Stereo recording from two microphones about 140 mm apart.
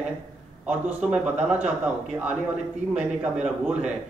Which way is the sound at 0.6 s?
5° right (ahead or behind).